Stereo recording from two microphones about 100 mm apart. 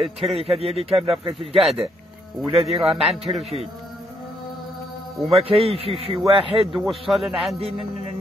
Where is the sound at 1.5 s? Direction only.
Centre (ahead or behind).